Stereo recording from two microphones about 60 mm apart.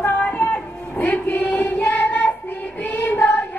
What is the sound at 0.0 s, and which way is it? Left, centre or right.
Child singing, left.